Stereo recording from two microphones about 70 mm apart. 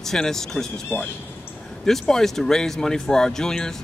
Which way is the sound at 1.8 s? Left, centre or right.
Centre.